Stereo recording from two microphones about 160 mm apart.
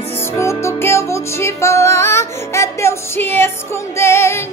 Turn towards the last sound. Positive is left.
turn(degrees=15)  # may be behind; listen again after turning